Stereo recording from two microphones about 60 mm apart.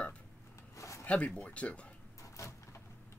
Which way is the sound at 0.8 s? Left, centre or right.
Left.